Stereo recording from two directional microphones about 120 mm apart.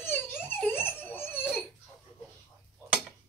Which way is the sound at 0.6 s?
20° left (ahead or behind).